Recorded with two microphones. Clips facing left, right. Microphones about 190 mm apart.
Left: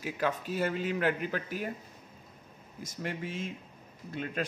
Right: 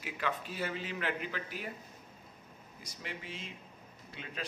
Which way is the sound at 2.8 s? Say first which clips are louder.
Left 9 dB; 50° left (ahead or behind).